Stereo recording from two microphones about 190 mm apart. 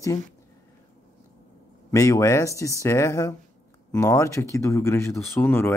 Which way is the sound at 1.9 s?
15° left (ahead or behind).